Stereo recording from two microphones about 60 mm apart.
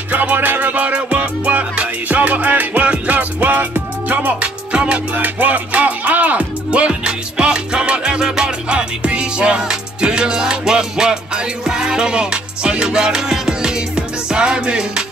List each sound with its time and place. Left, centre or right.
0.1 s music: right
5.1 s speech: right